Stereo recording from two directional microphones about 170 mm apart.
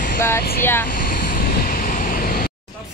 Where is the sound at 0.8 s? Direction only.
55° left (ahead or behind).